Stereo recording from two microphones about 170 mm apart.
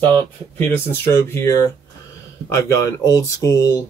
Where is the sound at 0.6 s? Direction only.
15° left (ahead or behind).